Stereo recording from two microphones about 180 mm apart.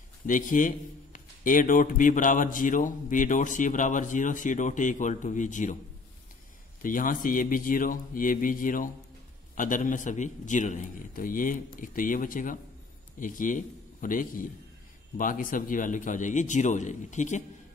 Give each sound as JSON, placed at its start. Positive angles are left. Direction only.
{"t": 0.3, "sound": "a man's voice", "side_deg": 45}
{"t": 6.8, "sound": "a man's voice", "side_deg": 50}